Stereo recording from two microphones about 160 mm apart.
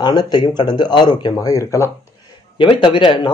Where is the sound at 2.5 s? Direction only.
30° left (ahead or behind).